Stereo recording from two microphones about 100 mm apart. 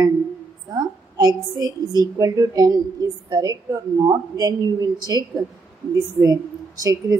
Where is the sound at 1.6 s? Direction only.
45° right (ahead or behind).